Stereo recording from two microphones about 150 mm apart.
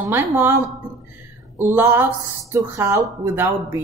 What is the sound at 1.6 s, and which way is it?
Speech, 15° right (ahead or behind).